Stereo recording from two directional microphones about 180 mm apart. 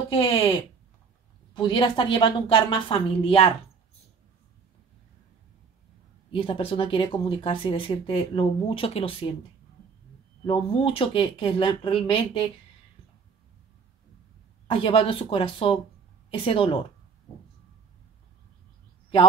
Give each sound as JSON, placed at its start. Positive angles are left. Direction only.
{"t": 0.1, "sound": "speech", "side_deg": 30}
{"t": 6.3, "sound": "speech", "side_deg": 30}
{"t": 10.4, "sound": "speech", "side_deg": 30}
{"t": 14.7, "sound": "speech", "side_deg": 30}